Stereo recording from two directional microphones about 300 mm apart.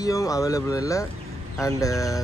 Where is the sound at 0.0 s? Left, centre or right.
Centre.